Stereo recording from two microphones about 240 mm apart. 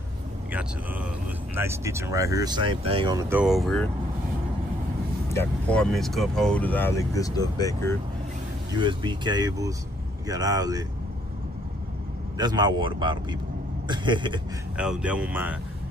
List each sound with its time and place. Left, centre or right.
0.5 s speech: centre
5.3 s speech: centre
8.7 s speech: centre
12.4 s speech: centre
14.8 s speech: centre